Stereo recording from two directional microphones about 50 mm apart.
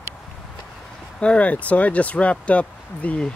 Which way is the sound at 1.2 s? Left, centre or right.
Left.